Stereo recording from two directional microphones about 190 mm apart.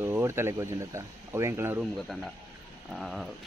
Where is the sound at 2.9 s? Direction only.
Centre (ahead or behind).